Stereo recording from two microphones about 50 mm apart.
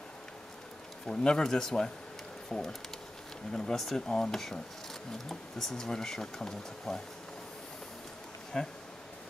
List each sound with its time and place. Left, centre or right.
1.0 s speech: centre
3.7 s speech: centre
8.5 s speech: centre